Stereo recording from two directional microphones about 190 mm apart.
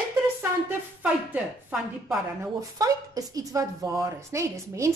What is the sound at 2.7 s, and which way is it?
A woman's voice, 20° right (ahead or behind).